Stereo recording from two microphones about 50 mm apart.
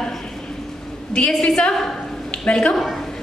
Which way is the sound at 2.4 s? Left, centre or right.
Centre.